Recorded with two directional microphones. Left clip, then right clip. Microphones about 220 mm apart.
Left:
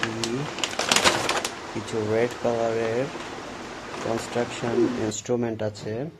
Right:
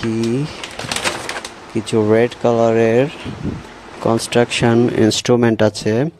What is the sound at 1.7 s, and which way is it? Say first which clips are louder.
Speech: right 11 dB; 35° right (ahead or behind).